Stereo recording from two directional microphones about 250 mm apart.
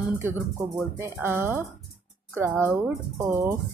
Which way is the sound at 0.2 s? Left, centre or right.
Centre.